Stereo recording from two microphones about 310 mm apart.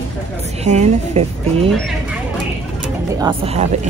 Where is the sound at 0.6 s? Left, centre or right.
Right.